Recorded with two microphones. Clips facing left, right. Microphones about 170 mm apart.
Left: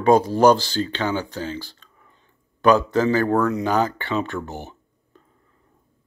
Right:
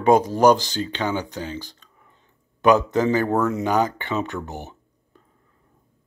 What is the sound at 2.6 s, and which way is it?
Speech, 20° right (ahead or behind).